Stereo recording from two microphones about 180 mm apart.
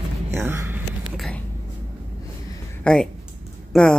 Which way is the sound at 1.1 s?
Centre (ahead or behind).